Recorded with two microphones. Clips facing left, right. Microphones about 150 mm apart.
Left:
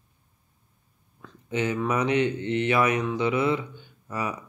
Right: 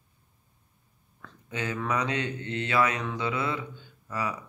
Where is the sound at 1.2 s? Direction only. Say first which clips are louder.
Left 7 dB; 20° left (ahead or behind).